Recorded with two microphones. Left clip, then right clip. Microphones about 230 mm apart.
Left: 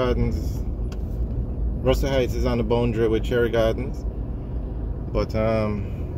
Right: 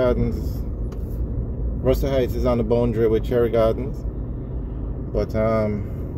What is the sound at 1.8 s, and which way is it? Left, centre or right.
Speech, centre.